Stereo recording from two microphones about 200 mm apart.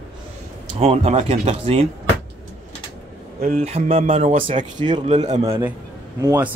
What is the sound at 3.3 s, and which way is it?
Speech, 45° right (ahead or behind).